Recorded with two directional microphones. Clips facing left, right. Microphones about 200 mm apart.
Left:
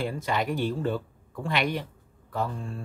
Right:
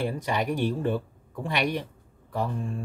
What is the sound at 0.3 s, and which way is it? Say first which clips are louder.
Speech: even; 15° right (ahead or behind).